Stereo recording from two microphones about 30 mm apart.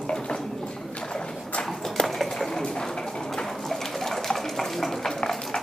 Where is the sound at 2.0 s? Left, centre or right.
Centre.